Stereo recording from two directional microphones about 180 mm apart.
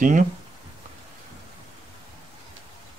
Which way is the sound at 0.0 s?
45° right (ahead or behind).